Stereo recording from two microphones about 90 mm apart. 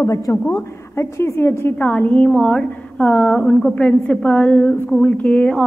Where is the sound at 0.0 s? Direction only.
35° left (ahead or behind).